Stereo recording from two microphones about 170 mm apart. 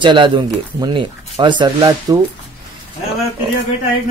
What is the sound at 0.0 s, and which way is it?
Speech, 30° right (ahead or behind).